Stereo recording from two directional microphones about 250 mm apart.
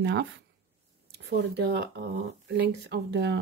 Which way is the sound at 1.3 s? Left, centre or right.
Right.